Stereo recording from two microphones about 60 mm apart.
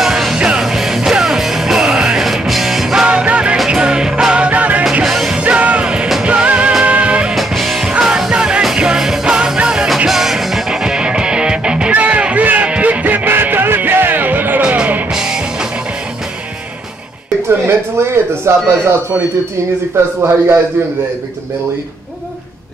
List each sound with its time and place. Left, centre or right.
0.0 s music: centre
3.1 s music: centre
5.0 s music: centre
5.4 s music: right
7.3 s music: centre; by 14.8 s right
14.8 s music: centre
17.5 s a sound: right
20.2 s a man's voice: right